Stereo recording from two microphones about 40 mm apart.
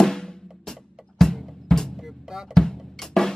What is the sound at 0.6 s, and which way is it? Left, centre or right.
Music, centre.